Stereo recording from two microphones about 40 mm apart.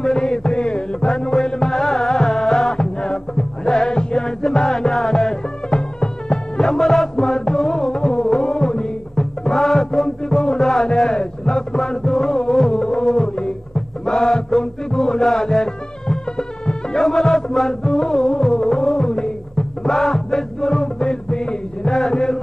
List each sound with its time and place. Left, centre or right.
0.0 s music: centre
9.5 s music: centre
19.9 s music: centre
21.3 s a sound: left